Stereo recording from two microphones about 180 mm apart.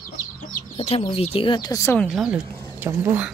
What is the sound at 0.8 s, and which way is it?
Speech, 35° left (ahead or behind).